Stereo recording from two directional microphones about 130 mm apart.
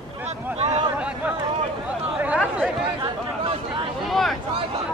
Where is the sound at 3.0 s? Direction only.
40° right (ahead or behind).